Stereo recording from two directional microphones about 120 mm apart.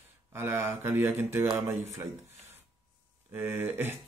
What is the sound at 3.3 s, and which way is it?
Speech, 20° right (ahead or behind).